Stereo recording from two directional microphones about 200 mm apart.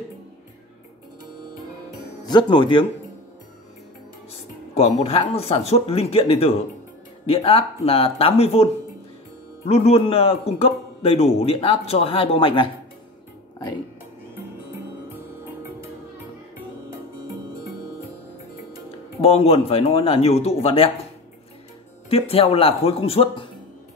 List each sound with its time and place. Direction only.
2.2 s a man's voice: 20° left (ahead or behind)
4.7 s a man's voice: 30° left (ahead or behind)
9.7 s a man's voice: 30° left (ahead or behind)
19.2 s a man's voice: 30° left (ahead or behind)
22.1 s a man's voice: 30° left (ahead or behind)